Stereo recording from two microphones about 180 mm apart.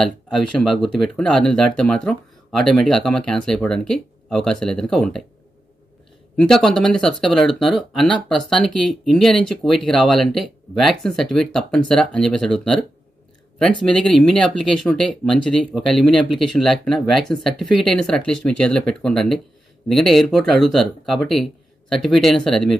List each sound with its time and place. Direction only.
0.0 s speech: centre (ahead or behind)
6.3 s speech: 5° left (ahead or behind)
13.9 s speech: 5° left (ahead or behind)